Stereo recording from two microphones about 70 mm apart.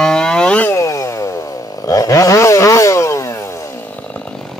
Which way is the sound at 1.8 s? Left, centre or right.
Left.